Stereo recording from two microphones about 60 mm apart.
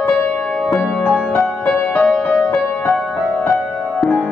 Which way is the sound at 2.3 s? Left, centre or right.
Centre.